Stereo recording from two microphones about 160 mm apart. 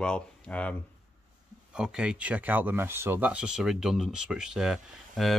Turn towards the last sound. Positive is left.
turn(degrees=0)  # may be behind; listen again after turning